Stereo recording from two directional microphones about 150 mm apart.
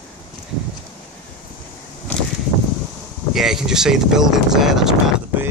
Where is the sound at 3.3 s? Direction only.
5° right (ahead or behind).